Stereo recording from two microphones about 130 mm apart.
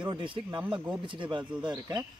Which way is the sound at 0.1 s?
40° right (ahead or behind).